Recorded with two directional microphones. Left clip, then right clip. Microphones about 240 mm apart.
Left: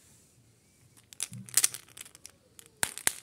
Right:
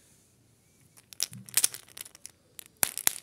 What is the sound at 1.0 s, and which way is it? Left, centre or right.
Tearing, centre.